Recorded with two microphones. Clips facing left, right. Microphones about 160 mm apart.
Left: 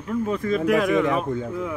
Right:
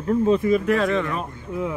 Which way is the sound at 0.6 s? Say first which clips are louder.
Left 2 dB; 10° left (ahead or behind).